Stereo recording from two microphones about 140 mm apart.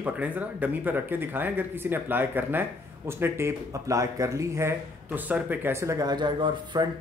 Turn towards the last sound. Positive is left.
turn(degrees=-30)  # may be behind; listen again after turning